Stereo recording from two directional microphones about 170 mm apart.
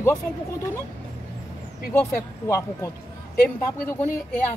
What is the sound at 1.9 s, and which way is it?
Speech, 15° left (ahead or behind).